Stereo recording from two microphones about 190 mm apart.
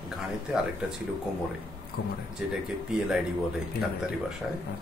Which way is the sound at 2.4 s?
5° right (ahead or behind).